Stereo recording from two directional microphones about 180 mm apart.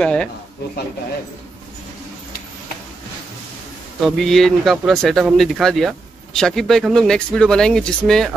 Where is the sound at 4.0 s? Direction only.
Centre (ahead or behind).